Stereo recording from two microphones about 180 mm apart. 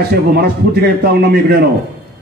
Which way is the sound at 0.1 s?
60° right (ahead or behind).